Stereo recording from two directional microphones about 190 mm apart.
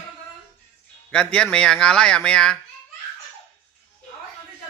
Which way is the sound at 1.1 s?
5° left (ahead or behind).